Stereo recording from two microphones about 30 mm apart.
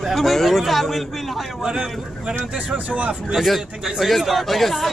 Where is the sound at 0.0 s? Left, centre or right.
Centre.